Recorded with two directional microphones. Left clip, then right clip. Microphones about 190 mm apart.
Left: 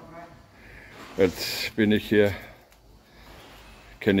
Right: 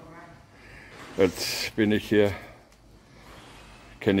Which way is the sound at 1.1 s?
10° right (ahead or behind).